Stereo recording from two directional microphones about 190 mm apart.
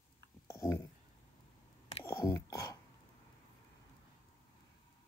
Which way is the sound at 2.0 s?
15° left (ahead or behind).